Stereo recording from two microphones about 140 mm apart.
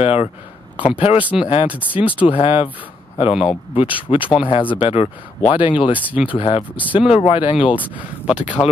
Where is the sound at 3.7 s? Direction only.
40° left (ahead or behind).